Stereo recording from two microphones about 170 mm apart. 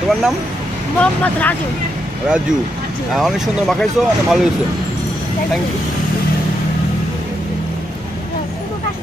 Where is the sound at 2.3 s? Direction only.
5° right (ahead or behind).